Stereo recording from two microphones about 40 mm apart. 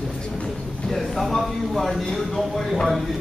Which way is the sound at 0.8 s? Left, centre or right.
Centre.